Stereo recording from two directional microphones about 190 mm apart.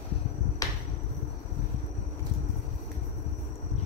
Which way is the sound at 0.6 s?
20° left (ahead or behind).